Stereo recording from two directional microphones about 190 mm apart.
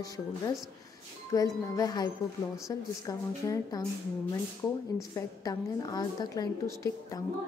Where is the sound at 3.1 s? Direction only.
20° left (ahead or behind).